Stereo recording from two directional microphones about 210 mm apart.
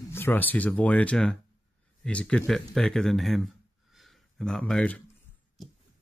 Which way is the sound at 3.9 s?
Centre (ahead or behind).